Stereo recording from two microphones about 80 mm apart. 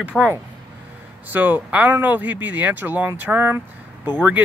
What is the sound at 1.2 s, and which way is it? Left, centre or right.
Speech, right.